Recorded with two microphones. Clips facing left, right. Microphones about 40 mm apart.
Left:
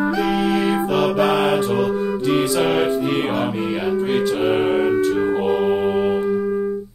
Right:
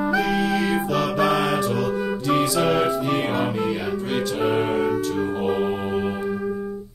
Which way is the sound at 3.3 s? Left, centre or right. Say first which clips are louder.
Left 2 dB; centre.